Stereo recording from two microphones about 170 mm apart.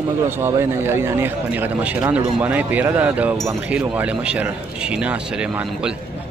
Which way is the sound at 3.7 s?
5° right (ahead or behind).